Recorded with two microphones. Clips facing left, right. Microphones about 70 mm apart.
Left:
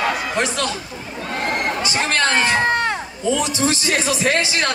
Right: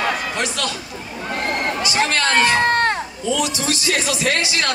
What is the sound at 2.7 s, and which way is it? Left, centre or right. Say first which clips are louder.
Crowd: right 2 dB; right.